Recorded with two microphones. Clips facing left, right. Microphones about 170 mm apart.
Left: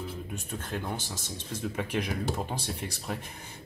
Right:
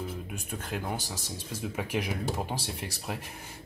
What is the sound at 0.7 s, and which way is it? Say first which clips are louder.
Speech: right 1 dB; 10° right (ahead or behind).